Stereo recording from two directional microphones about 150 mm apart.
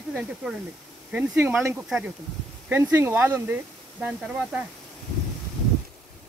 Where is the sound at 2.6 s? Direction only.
10° right (ahead or behind).